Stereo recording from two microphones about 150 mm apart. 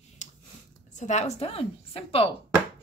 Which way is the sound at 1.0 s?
50° left (ahead or behind).